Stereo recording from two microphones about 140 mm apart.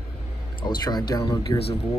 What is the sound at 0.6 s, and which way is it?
Speech, 30° left (ahead or behind).